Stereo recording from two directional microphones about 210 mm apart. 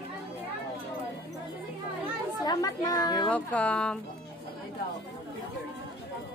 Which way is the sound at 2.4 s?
20° left (ahead or behind).